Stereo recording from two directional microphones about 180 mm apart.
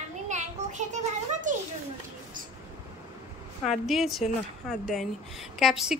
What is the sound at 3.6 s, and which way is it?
A woman's voice, centre (ahead or behind).